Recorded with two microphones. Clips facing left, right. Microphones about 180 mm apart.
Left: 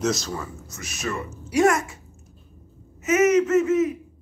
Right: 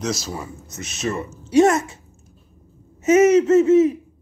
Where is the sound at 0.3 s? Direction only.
15° right (ahead or behind).